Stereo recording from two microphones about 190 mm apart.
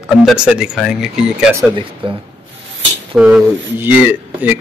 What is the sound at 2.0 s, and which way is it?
Speech, 25° right (ahead or behind).